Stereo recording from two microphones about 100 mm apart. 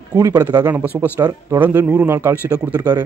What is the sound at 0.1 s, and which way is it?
Speech, 40° right (ahead or behind).